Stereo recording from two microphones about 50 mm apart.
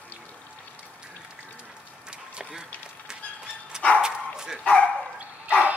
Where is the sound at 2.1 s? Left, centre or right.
Centre.